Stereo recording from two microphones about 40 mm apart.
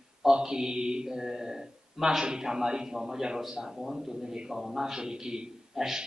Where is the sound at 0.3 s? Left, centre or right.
Centre.